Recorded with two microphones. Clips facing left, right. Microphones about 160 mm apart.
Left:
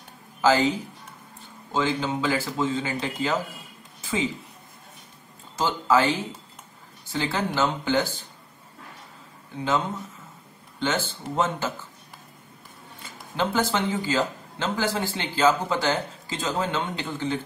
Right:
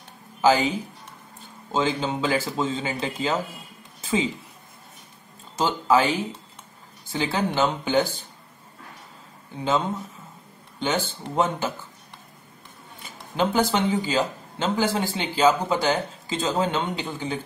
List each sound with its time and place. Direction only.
0.4 s a man's voice: 15° right (ahead or behind)
4.0 s a sound: 20° right (ahead or behind)
5.6 s speech: 15° right (ahead or behind)
10.8 s speech: 15° right (ahead or behind)
13.0 s speech: 15° right (ahead or behind)